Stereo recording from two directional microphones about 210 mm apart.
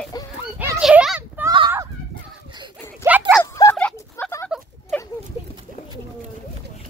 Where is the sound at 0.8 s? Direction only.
Centre (ahead or behind).